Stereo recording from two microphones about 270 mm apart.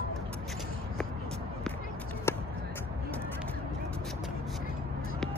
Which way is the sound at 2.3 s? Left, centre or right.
Centre.